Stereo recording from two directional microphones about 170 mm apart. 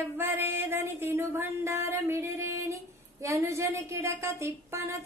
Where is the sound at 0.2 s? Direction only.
15° right (ahead or behind).